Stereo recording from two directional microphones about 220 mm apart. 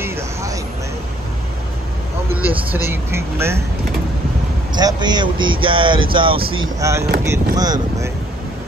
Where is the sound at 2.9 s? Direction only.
10° right (ahead or behind).